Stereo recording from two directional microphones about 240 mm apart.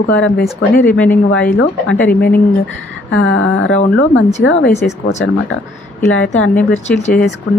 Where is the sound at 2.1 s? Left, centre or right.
Left.